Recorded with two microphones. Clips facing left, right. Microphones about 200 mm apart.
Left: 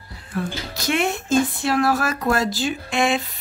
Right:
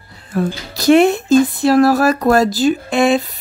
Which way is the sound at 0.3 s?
40° right (ahead or behind).